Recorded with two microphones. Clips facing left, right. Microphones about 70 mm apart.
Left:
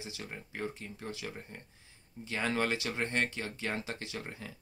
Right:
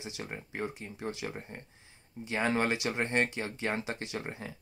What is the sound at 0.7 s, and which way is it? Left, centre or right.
Speech, centre.